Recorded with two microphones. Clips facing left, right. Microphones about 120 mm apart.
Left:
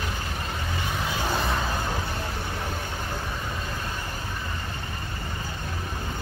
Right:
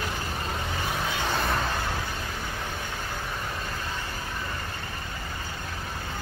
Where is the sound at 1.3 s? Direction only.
Centre (ahead or behind).